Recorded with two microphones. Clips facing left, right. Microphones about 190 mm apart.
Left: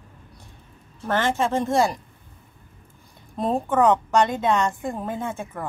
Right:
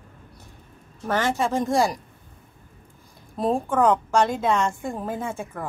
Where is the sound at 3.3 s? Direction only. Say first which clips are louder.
Left 1 dB; centre (ahead or behind).